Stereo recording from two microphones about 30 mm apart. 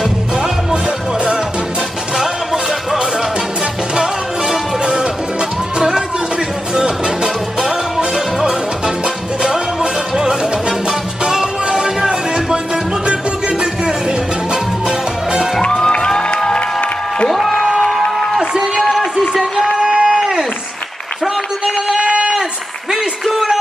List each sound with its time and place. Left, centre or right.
0.0 s music: right
2.1 s music: centre
3.9 s music: right
8.0 s music: right
13.0 s music: right
15.6 s music: left
18.5 s a sound: right
21.6 s run: right